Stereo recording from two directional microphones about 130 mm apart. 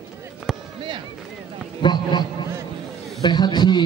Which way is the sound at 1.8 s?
35° left (ahead or behind).